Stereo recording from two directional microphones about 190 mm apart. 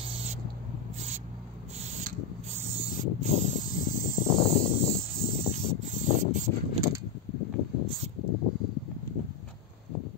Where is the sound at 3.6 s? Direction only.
45° left (ahead or behind).